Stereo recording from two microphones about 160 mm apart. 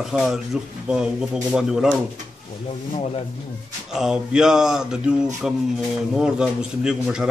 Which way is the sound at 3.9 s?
5° right (ahead or behind).